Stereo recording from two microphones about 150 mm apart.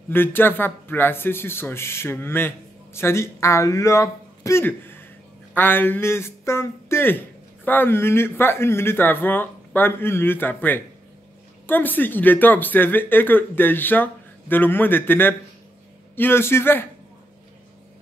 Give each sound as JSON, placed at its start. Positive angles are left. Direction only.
{"t": 0.1, "sound": "speech", "side_deg": 15}